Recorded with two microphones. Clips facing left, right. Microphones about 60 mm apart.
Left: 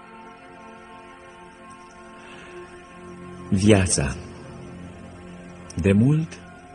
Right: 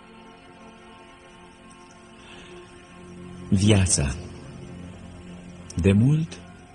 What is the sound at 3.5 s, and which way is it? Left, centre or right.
A man's voice, left.